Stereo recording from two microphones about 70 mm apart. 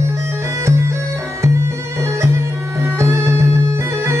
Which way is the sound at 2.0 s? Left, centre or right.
Right.